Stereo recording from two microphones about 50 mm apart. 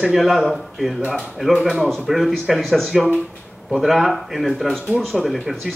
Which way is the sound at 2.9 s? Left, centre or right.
Centre.